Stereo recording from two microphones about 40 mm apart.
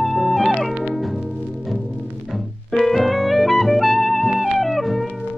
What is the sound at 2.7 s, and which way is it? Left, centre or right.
Music, centre.